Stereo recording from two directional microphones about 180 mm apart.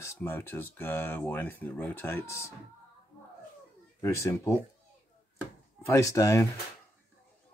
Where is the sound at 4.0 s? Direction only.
15° left (ahead or behind).